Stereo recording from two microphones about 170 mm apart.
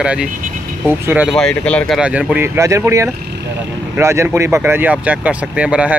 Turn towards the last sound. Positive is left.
turn(degrees=-5)  # may be behind; listen again after turning